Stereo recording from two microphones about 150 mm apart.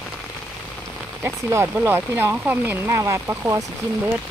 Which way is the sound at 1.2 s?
15° right (ahead or behind).